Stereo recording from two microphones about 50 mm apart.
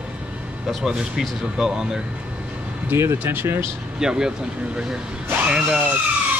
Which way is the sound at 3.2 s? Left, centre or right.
Right.